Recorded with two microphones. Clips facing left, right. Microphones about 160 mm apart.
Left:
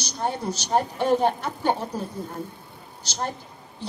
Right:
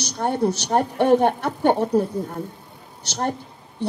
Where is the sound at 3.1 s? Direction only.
65° right (ahead or behind).